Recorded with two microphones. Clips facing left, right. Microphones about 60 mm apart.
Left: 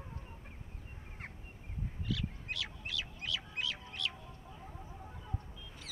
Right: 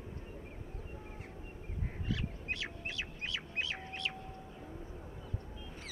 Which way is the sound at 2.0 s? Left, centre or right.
Right.